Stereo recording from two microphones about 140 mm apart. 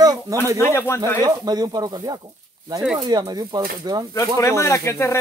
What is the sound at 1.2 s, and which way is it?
Speech, 30° right (ahead or behind).